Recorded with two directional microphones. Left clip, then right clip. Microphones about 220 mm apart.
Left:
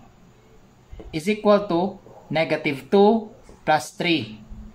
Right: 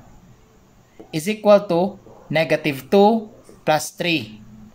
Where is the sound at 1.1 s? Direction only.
45° right (ahead or behind).